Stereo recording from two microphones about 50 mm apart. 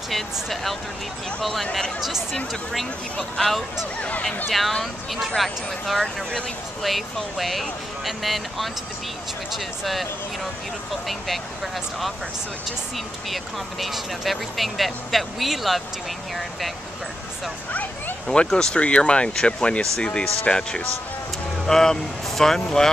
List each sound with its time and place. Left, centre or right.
0.1 s speech: centre
2.0 s speech: centre
3.3 s speech: centre
9.8 s speech: centre
18.2 s speech: centre